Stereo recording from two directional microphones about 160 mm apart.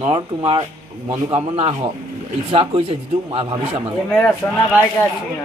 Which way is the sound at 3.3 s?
35° right (ahead or behind).